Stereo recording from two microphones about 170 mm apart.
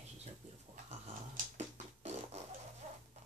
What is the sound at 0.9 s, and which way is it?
Fart, 40° right (ahead or behind).